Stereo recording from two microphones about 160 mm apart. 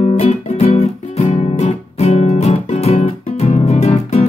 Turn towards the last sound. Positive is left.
turn(degrees=40)  # may be behind; listen again after turning